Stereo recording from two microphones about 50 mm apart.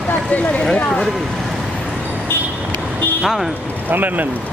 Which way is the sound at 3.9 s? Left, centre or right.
Right.